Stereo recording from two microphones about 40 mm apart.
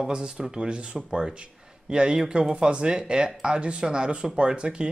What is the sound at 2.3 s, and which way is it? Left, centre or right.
Speech, right.